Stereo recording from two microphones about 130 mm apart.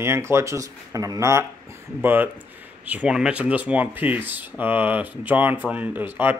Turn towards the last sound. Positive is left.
turn(degrees=-15)  # may be behind; listen again after turning